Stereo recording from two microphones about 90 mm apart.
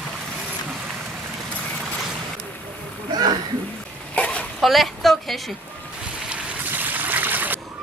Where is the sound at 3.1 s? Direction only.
50° right (ahead or behind).